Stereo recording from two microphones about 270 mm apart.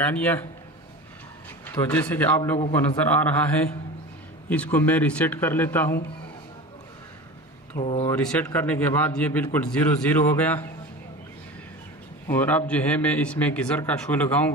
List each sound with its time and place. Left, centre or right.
0.0 s a man's voice: centre
1.9 s a man's voice: centre
4.5 s a man's voice: centre
7.7 s speech: left
8.1 s a man's voice: centre
12.3 s a man's voice: centre